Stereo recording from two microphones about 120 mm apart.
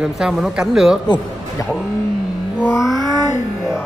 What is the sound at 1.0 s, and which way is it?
Speech, 35° left (ahead or behind).